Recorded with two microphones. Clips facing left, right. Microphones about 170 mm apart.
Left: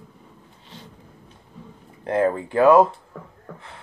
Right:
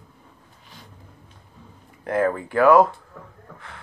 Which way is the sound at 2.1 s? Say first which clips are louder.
Left 1 dB; 25° left (ahead or behind).